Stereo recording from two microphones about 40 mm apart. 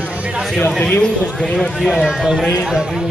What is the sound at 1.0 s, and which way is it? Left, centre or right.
Speech, centre.